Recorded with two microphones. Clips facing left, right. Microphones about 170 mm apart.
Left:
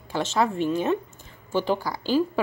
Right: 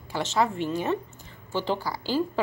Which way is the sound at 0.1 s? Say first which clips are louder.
Left 1 dB; 15° right (ahead or behind).